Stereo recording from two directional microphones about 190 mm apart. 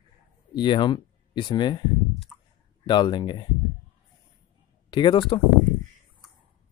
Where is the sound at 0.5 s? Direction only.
25° left (ahead or behind).